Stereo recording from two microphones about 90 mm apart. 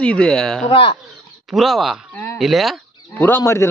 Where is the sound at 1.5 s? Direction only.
Centre (ahead or behind).